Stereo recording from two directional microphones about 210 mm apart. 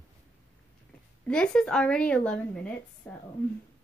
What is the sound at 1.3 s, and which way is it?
A woman's voice, 5° left (ahead or behind).